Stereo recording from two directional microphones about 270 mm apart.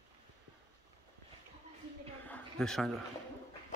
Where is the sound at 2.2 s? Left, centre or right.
Centre.